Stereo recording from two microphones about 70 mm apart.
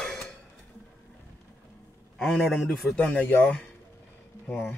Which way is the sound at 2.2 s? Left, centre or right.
Centre.